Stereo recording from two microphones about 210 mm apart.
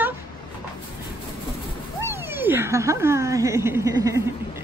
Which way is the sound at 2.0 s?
10° right (ahead or behind).